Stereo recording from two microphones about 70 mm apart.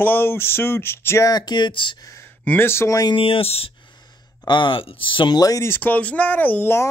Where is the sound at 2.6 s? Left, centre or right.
Left.